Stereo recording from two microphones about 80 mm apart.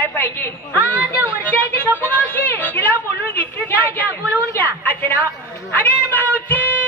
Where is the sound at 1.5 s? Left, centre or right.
Left.